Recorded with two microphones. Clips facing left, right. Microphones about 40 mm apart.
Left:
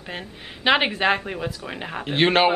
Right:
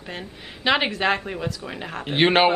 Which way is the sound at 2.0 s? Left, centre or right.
Centre.